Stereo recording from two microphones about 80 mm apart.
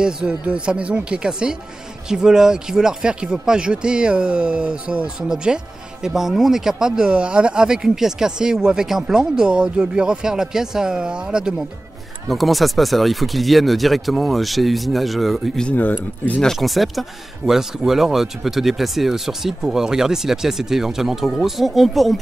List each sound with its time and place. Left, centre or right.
0.0 s speech: centre
12.3 s speech: centre
15.7 s speech: centre
16.5 s speech: centre